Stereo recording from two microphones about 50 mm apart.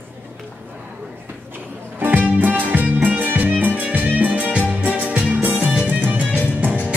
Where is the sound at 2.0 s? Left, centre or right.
Right.